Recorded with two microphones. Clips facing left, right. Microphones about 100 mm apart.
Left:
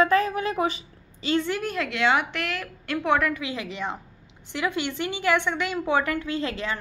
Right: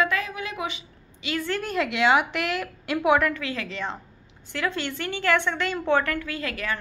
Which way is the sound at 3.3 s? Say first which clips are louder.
Even; 15° left (ahead or behind).